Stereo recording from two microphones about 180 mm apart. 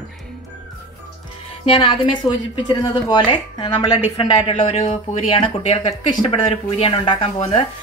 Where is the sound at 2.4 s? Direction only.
25° left (ahead or behind).